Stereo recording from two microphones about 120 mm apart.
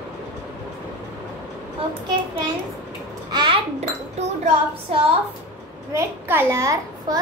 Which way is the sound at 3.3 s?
45° right (ahead or behind).